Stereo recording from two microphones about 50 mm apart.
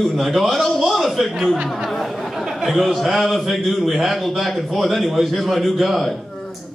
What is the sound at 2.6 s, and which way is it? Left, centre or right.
A man's voice, centre.